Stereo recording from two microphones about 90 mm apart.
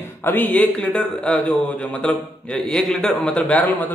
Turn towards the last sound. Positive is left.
turn(degrees=15)  # may be behind; listen again after turning